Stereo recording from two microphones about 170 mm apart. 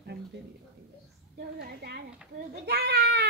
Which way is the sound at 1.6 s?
70° right (ahead or behind).